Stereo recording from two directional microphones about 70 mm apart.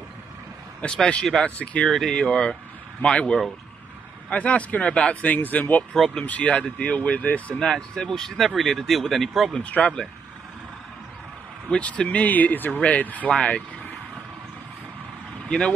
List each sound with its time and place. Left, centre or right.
0.7 s speech: centre
1.9 s speech: centre
7.6 s speech: centre
9.5 s speech: centre
11.7 s speech: centre